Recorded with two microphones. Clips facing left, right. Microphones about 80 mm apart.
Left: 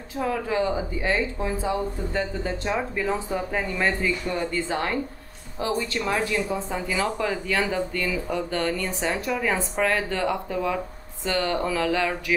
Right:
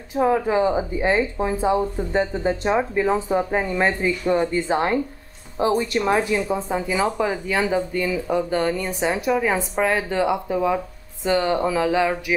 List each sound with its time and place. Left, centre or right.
0.1 s a woman's voice: right